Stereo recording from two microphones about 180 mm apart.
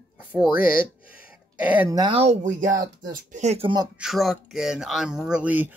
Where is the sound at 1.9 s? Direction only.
25° right (ahead or behind).